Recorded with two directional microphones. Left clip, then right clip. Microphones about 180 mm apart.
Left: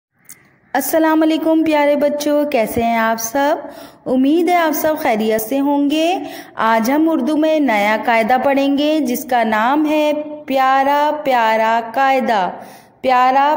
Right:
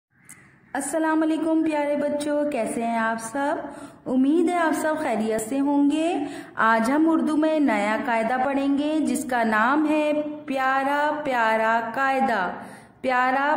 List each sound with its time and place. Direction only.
0.7 s a woman's voice: 35° left (ahead or behind)